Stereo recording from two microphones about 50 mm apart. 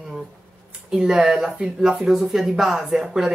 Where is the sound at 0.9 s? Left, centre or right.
Centre.